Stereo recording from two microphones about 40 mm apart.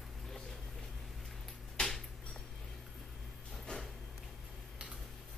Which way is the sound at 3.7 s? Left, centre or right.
Left.